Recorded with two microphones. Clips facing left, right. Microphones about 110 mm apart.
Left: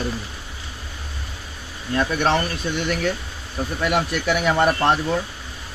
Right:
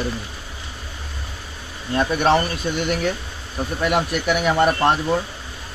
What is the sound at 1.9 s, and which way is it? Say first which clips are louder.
Speech: right 1 dB; 20° right (ahead or behind).